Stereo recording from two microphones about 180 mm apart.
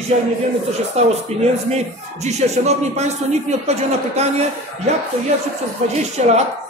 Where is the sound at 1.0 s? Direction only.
40° right (ahead or behind).